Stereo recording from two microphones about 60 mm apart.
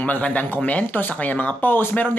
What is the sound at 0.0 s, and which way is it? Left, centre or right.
Speech, left.